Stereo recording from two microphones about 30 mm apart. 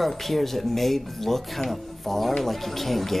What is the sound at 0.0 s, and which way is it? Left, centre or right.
Speech, centre.